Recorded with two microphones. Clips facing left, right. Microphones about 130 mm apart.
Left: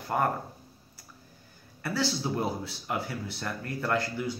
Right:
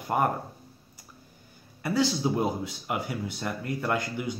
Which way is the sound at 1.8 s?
15° right (ahead or behind).